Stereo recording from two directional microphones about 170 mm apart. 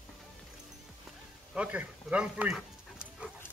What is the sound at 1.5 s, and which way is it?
Dog, 5° right (ahead or behind).